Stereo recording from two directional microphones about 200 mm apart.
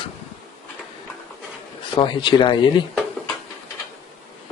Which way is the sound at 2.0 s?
25° left (ahead or behind).